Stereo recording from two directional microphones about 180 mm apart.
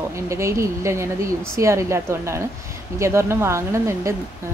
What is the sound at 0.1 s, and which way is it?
A woman's voice, 15° right (ahead or behind).